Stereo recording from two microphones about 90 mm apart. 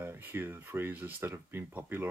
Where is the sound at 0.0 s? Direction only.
25° right (ahead or behind).